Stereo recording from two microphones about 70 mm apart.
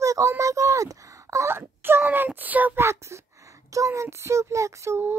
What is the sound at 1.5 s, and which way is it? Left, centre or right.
Speech, right.